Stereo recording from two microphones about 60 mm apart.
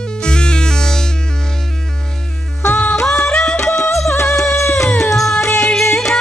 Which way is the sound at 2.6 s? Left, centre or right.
Left.